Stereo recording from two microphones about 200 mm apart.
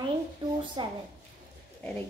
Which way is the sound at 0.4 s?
25° right (ahead or behind).